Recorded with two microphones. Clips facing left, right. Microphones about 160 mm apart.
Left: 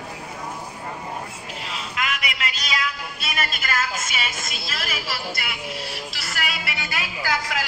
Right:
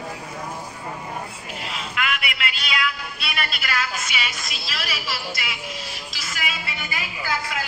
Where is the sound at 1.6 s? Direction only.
35° left (ahead or behind).